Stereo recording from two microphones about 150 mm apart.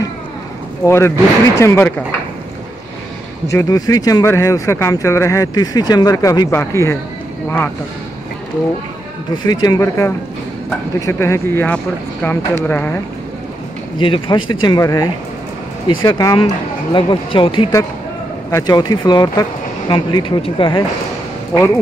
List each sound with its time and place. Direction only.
0.8 s speech: 15° left (ahead or behind)
3.4 s speech: 20° left (ahead or behind)
9.3 s speech: 30° left (ahead or behind); by 13.0 s 10° left (ahead or behind)
13.9 s speech: 35° left (ahead or behind)